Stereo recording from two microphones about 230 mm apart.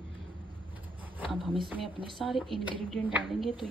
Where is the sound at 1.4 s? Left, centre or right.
Right.